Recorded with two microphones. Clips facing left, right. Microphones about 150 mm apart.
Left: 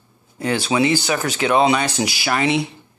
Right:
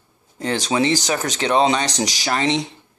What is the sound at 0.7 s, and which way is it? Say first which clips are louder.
Speech: left 1 dB; 40° right (ahead or behind).